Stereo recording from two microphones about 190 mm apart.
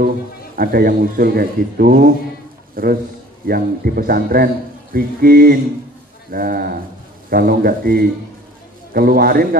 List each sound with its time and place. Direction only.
0.6 s a man's voice: 50° right (ahead or behind)